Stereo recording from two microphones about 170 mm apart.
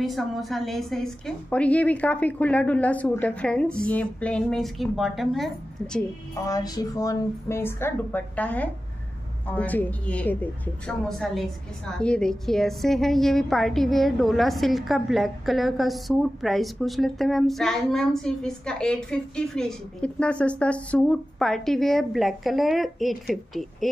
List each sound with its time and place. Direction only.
0.0 s a woman's voice: centre (ahead or behind)
6.4 s a woman's voice: 20° left (ahead or behind); by 23.9 s centre (ahead or behind)